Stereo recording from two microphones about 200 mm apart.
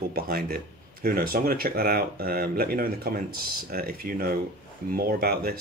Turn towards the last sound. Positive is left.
turn(degrees=-50)  # may be behind; listen again after turning